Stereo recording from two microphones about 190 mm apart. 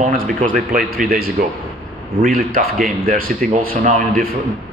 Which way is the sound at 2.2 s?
50° right (ahead or behind).